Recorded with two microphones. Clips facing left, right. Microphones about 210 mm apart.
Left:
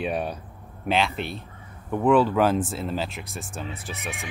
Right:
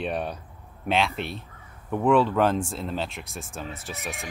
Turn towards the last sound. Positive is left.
turn(degrees=0)  # may be behind; listen again after turning